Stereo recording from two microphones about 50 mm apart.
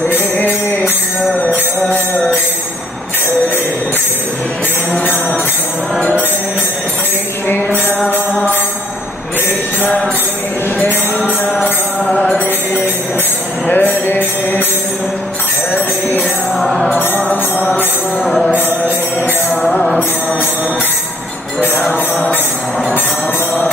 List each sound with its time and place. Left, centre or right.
0.1 s music: left
7.4 s music: left
13.7 s music: left
15.7 s music: left
16.5 s music: centre
17.3 s music: left
18.2 s music: centre